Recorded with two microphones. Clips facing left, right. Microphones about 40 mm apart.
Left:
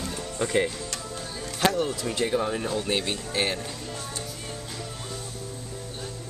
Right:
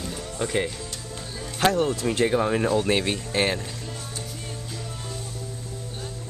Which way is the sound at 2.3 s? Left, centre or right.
Right.